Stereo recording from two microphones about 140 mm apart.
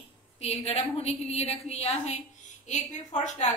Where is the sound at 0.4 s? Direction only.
50° left (ahead or behind).